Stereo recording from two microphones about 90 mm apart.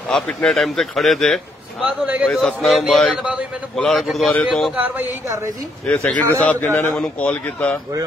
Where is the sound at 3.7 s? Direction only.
5° left (ahead or behind).